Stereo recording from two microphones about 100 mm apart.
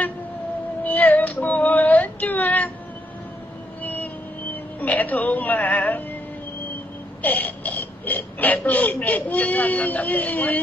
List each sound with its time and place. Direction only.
0.8 s female singing: 15° left (ahead or behind)
3.8 s vehicle: 15° left (ahead or behind)
4.7 s speech: 15° left (ahead or behind)
7.2 s speech: 15° left (ahead or behind)